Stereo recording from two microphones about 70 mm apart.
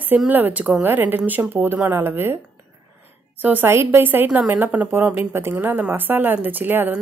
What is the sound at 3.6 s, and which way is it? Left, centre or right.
A woman's voice, right.